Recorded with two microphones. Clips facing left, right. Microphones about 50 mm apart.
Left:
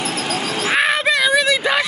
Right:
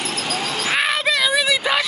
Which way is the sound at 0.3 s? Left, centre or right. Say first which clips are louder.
Left 2 dB; centre.